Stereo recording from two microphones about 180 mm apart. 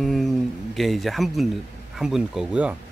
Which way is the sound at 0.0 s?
Centre (ahead or behind).